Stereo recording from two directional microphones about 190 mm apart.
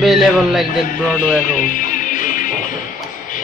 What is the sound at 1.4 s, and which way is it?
Music, 45° left (ahead or behind).